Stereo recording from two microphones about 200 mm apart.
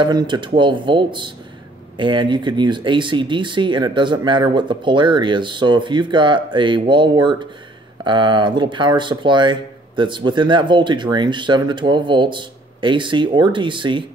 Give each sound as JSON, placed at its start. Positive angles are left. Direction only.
{"t": 0.0, "sound": "speech", "side_deg": -20}